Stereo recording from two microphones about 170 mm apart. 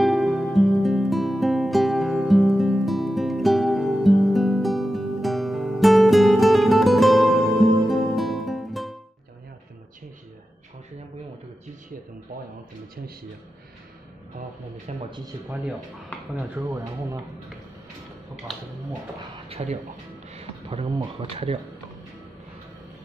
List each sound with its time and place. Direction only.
0.0 s music: centre (ahead or behind)
15.0 s a sound: 25° right (ahead or behind)
15.4 s speech: 10° right (ahead or behind)
18.5 s speech: centre (ahead or behind)
19.3 s speech: 35° right (ahead or behind)